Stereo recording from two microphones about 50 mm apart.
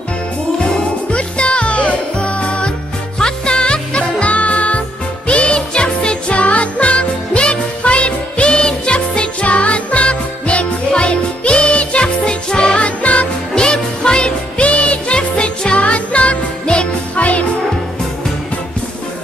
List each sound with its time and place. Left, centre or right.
1.1 s music: left
13.6 s music: centre